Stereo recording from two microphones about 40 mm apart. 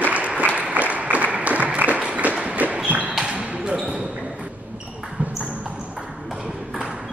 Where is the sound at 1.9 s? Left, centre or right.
Right.